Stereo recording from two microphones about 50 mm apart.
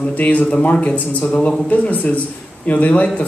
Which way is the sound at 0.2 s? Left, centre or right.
Left.